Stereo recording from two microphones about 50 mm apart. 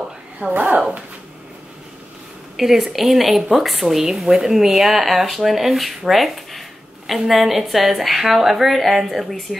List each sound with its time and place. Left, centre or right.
0.4 s speech: right
2.5 s speech: centre